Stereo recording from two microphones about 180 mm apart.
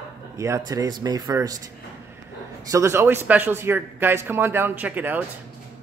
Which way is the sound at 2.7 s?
15° right (ahead or behind).